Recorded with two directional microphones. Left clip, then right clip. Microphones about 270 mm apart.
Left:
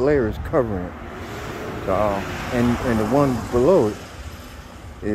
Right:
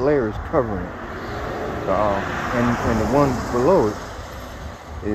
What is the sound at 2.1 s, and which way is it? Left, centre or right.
Speech, centre.